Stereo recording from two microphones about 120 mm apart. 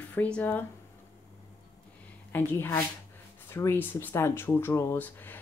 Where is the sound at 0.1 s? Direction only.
15° left (ahead or behind).